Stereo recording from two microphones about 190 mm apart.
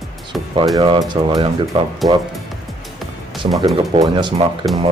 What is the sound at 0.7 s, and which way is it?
Speech, 25° right (ahead or behind).